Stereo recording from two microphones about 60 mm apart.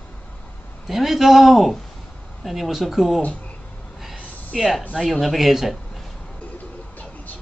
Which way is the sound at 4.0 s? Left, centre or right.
Centre.